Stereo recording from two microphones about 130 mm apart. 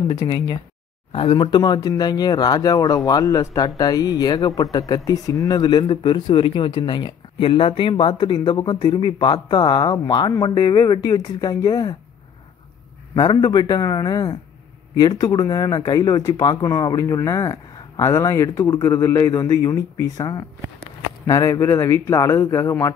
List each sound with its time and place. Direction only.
1.1 s speech: 40° left (ahead or behind)
13.1 s a man's voice: 35° left (ahead or behind)